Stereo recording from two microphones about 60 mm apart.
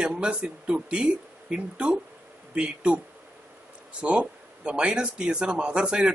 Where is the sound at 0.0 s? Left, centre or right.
Centre.